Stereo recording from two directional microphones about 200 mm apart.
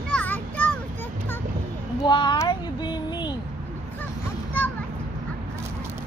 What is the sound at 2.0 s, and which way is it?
Child singing, 25° left (ahead or behind).